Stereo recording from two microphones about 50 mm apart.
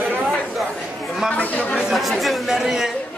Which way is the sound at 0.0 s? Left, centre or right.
Right.